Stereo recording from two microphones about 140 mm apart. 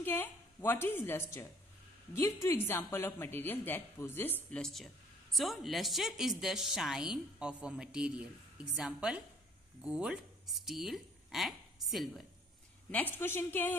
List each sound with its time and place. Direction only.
0.0 s a woman's voice: 15° left (ahead or behind); by 12.3 s centre (ahead or behind)
12.9 s a woman's voice: 15° left (ahead or behind)